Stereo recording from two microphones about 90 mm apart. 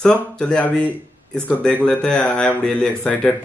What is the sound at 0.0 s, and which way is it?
Speech, 10° left (ahead or behind).